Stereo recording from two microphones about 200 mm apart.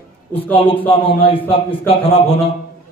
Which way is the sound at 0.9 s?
25° left (ahead or behind).